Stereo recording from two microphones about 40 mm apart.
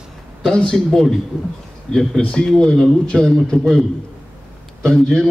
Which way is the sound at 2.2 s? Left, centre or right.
Left.